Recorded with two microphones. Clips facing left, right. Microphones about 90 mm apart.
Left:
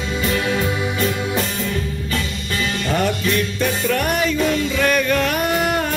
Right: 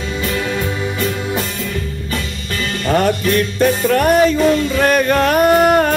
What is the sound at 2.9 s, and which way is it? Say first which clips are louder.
Music: right 6 dB; 45° right (ahead or behind).